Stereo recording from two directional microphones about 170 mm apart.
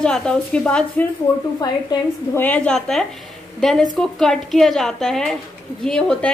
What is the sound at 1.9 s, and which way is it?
Speech, 20° left (ahead or behind).